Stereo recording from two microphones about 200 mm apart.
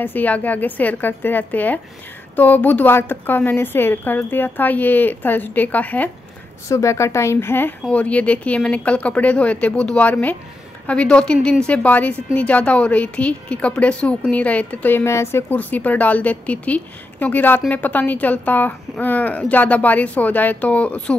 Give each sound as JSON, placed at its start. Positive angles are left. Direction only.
{"t": 0.0, "sound": "a woman's voice", "side_deg": 10}